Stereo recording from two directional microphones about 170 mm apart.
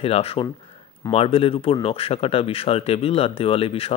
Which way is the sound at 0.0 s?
35° left (ahead or behind).